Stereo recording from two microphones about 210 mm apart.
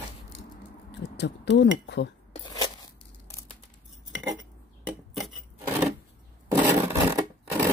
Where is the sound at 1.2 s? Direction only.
55° left (ahead or behind).